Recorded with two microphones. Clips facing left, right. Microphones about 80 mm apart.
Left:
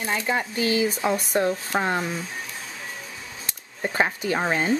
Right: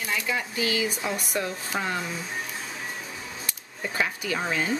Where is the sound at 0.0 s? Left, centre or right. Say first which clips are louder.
Left 4 dB; left.